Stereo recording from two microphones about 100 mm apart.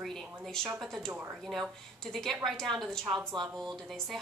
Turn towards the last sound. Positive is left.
turn(degrees=0)  # may be behind; listen again after turning